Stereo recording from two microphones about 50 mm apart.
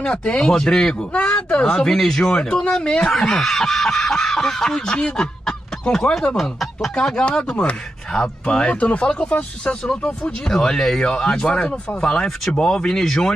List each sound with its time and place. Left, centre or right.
0.0 s speech: centre
1.1 s speech: left; by 6.9 s centre
7.2 s speech: centre
10.5 s speech: centre